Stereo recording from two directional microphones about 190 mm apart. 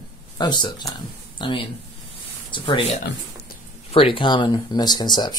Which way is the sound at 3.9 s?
30° left (ahead or behind).